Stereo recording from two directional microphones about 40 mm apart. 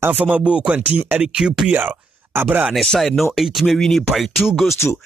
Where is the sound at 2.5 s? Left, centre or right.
Right.